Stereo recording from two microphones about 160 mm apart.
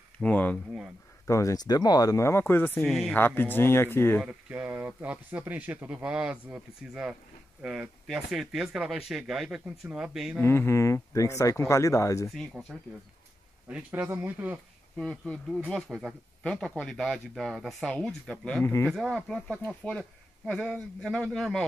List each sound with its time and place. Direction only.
0.2 s speech: 10° left (ahead or behind)
1.2 s speech: 20° left (ahead or behind)
2.8 s speech: centre (ahead or behind)
3.2 s speech: 15° left (ahead or behind)
4.2 s speech: 10° right (ahead or behind)
10.4 s speech: 15° left (ahead or behind)
12.3 s speech: centre (ahead or behind)
15.0 s speech: 5° left (ahead or behind)